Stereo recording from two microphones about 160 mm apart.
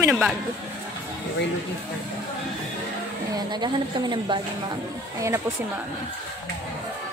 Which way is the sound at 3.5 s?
25° right (ahead or behind).